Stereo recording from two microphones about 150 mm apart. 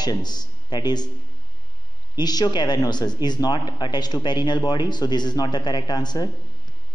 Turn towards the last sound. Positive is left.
turn(degrees=25)  # may be behind; listen again after turning